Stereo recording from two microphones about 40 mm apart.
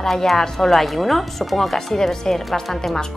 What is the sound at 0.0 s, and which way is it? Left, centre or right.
A woman's voice, centre.